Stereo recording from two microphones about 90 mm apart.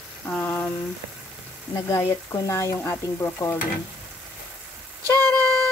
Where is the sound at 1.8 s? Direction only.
35° left (ahead or behind).